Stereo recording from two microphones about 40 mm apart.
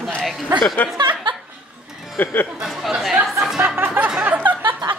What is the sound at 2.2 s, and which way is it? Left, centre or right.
Speech, left.